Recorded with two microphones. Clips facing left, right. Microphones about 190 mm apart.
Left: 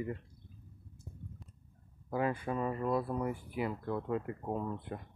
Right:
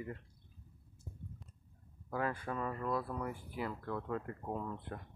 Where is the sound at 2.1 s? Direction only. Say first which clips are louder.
Left 4 dB; 15° left (ahead or behind).